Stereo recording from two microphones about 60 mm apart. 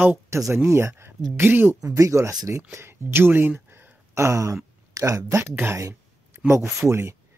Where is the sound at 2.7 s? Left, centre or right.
Right.